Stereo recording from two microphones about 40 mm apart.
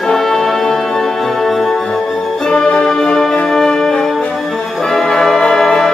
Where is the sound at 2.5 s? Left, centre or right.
Left.